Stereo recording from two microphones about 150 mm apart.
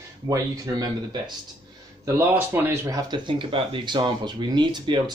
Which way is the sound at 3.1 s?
35° right (ahead or behind).